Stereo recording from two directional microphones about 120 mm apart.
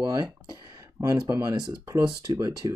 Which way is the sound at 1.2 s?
30° right (ahead or behind).